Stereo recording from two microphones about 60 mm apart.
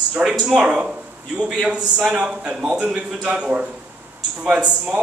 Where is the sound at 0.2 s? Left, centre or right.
Centre.